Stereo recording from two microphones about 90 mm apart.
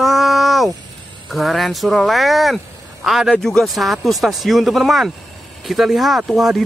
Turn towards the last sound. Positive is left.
turn(degrees=0)  # may be behind; listen again after turning